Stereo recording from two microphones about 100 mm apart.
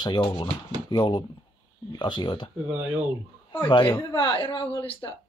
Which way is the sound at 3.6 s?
50° left (ahead or behind).